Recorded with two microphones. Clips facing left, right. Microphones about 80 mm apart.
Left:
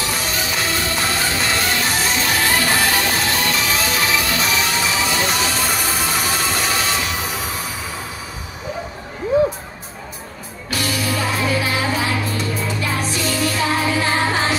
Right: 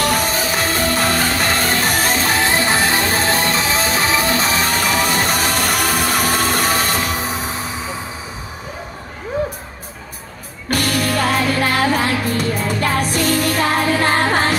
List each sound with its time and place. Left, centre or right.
0.0 s music: right
0.3 s music: right
10.7 s music: right